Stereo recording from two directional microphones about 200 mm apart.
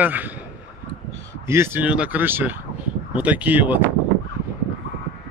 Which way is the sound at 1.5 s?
10° right (ahead or behind).